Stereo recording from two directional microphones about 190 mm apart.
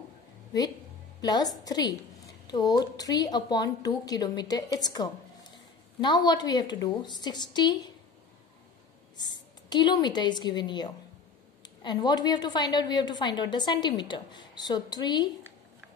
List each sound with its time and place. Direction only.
1.2 s a woman's voice: 20° left (ahead or behind)
9.1 s a woman's voice: 25° left (ahead or behind)